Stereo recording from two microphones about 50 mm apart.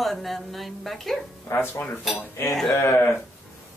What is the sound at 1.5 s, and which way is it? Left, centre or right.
Speech, left.